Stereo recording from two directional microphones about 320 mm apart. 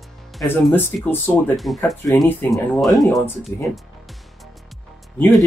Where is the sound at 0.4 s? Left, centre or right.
Centre.